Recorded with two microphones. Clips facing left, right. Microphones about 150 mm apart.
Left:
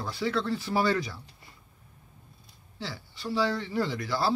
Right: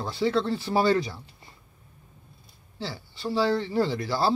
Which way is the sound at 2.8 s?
30° right (ahead or behind).